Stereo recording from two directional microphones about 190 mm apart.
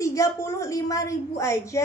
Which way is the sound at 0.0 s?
15° left (ahead or behind).